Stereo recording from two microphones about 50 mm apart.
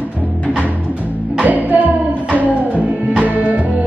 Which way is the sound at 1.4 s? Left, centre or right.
Right.